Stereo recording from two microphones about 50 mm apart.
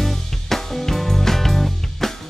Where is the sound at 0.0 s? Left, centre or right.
Centre.